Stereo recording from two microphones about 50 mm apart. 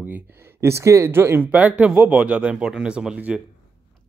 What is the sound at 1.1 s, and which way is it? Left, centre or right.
Speech, right.